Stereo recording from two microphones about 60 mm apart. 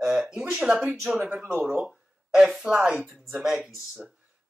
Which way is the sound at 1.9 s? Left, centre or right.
Centre.